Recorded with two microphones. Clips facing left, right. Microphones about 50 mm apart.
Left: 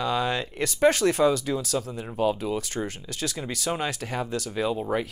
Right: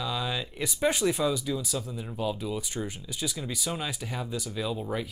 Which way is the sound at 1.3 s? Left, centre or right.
Left.